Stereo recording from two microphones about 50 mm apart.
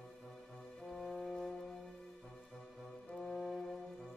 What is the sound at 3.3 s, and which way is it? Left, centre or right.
Music, centre.